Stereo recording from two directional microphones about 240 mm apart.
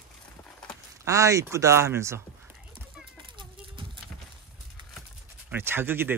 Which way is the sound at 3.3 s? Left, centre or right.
Centre.